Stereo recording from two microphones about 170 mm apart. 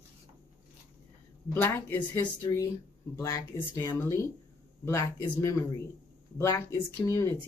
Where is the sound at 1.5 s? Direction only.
15° left (ahead or behind).